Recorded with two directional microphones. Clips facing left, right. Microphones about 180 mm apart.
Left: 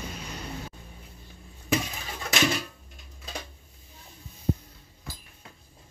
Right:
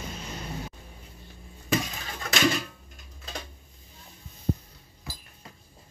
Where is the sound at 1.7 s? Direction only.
5° left (ahead or behind).